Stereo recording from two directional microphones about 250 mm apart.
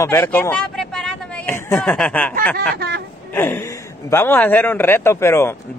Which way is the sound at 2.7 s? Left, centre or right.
Right.